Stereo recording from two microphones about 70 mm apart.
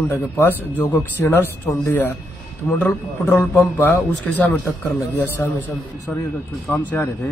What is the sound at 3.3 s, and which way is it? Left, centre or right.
Speech, left.